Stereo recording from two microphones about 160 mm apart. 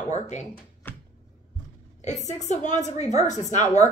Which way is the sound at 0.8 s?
15° left (ahead or behind).